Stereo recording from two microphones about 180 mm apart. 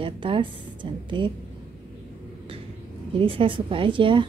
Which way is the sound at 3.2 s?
30° right (ahead or behind).